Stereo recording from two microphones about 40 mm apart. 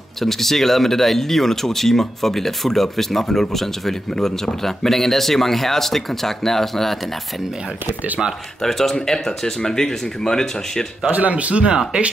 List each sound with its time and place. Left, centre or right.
0.2 s speech: centre
8.5 s speech: centre
11.1 s speech: right